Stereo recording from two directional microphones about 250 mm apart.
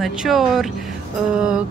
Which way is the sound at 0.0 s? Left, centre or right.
Centre.